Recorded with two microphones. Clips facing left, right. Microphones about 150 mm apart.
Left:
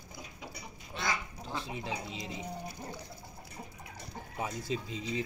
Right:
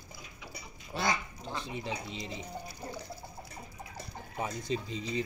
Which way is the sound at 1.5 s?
Centre (ahead or behind).